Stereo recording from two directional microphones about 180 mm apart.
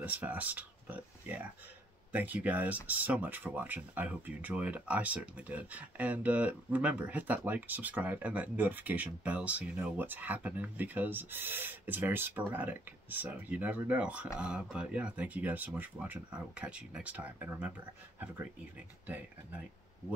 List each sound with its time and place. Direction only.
0.0 s speech: 10° right (ahead or behind)
19.0 s speech: 10° right (ahead or behind)